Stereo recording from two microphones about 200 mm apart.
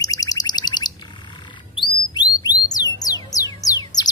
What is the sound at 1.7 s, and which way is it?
Chirp, 20° left (ahead or behind).